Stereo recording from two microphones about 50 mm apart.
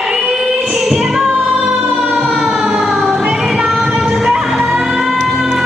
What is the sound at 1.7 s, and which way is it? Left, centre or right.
Music, right.